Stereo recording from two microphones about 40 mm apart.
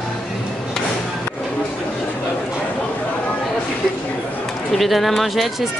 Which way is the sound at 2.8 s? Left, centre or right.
Left.